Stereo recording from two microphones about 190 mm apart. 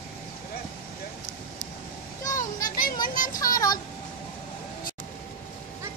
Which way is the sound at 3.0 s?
45° left (ahead or behind).